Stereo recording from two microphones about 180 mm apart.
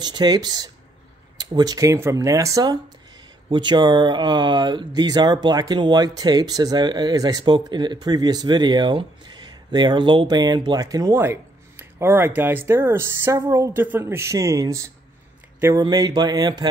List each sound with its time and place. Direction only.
0.0 s speech: 25° right (ahead or behind)